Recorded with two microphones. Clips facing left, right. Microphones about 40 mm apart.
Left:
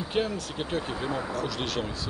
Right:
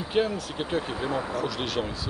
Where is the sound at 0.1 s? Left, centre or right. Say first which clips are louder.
Right 4 dB; centre.